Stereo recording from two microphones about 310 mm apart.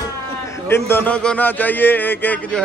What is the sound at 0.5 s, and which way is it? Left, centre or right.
A man's voice, centre.